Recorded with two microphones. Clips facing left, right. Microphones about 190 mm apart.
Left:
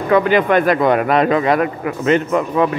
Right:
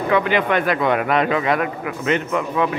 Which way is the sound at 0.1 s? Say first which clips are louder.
Left 6 dB; 40° left (ahead or behind).